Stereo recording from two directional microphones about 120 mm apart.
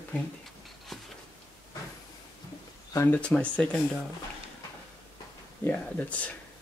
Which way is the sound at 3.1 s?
10° left (ahead or behind).